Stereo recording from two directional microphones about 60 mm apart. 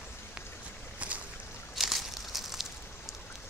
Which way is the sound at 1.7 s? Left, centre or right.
Centre.